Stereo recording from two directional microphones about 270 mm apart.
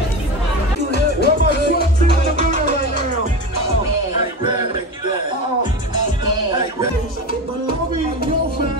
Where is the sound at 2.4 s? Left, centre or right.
Right.